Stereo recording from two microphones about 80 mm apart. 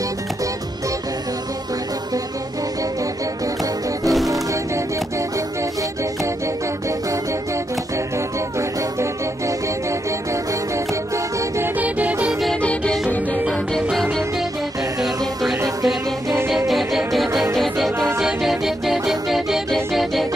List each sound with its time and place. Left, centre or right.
4.1 s music: centre
8.5 s music: right
11.8 s music: centre
12.3 s music: centre
15.0 s music: centre
17.9 s music: right
18.2 s music: centre